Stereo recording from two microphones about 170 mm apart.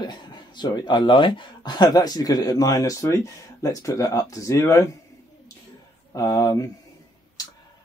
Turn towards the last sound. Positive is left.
turn(degrees=25)  # may be behind; listen again after turning